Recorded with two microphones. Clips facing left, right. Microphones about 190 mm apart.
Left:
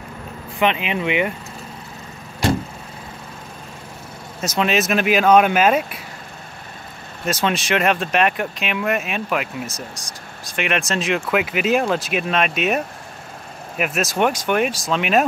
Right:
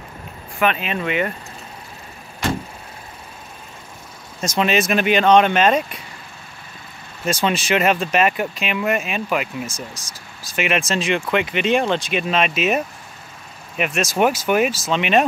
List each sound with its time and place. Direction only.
0.6 s speech: 20° left (ahead or behind)
4.4 s speech: centre (ahead or behind)
7.2 s speech: centre (ahead or behind)